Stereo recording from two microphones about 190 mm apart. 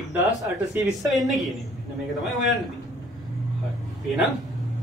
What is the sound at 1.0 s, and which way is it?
Speech, centre (ahead or behind).